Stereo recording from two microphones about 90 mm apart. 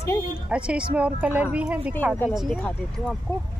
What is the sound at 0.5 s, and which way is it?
Speech, 10° right (ahead or behind).